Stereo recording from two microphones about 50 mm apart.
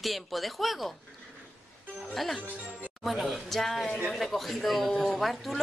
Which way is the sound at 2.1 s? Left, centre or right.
Centre.